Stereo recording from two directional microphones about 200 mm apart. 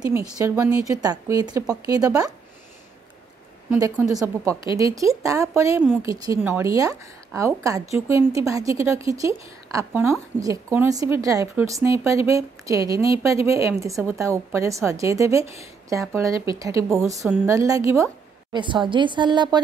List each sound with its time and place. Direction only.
0.4 s a woman's voice: 15° right (ahead or behind)
4.1 s a woman's voice: 15° right (ahead or behind)